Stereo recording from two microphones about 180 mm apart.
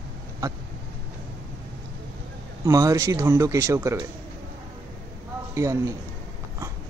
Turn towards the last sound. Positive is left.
turn(degrees=-15)  # may be behind; listen again after turning